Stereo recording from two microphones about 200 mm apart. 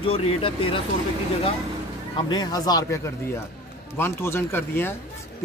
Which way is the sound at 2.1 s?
20° left (ahead or behind).